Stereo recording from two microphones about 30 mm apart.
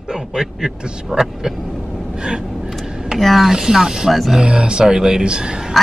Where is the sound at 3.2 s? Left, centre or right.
Centre.